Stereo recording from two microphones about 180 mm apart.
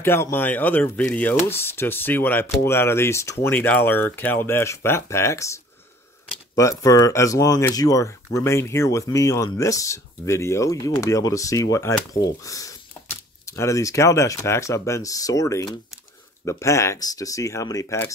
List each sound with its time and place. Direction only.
0.0 s speech: 15° left (ahead or behind)